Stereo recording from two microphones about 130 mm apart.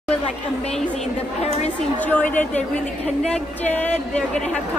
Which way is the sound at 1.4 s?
55° left (ahead or behind).